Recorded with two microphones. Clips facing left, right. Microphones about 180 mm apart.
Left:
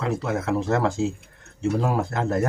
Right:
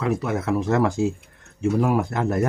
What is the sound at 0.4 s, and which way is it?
Speech, 20° left (ahead or behind).